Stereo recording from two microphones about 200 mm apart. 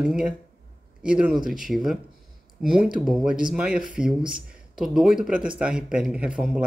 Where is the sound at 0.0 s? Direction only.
5° right (ahead or behind).